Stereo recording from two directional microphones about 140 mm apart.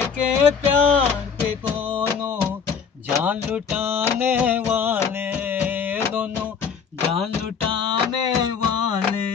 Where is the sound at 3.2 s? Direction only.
10° right (ahead or behind).